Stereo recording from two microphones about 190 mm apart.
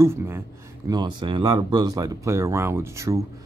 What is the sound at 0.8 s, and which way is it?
Speech, 20° right (ahead or behind).